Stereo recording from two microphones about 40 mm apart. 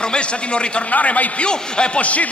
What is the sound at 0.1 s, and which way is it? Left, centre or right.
Speech, left.